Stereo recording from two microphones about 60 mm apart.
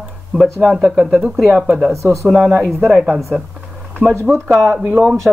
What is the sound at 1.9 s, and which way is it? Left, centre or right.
Speech, right.